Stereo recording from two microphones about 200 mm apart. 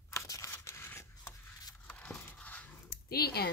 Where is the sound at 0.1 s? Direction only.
15° left (ahead or behind).